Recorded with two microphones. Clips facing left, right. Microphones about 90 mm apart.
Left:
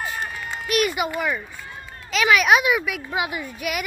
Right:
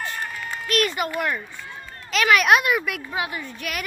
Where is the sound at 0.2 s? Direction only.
15° left (ahead or behind).